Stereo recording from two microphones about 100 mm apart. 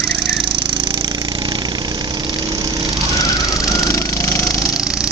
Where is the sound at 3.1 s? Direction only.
35° left (ahead or behind).